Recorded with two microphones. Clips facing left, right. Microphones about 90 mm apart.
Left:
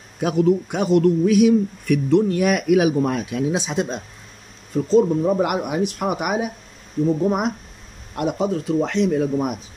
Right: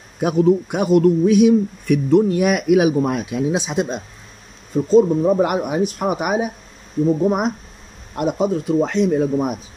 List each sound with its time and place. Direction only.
0.2 s a man's voice: 20° right (ahead or behind)